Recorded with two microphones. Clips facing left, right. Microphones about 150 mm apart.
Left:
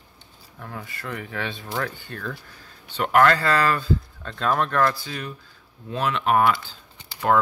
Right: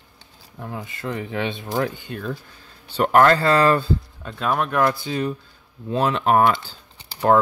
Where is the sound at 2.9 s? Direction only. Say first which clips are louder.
Right 3 dB; 35° right (ahead or behind).